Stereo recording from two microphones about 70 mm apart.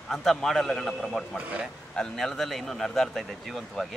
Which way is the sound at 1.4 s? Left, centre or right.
Centre.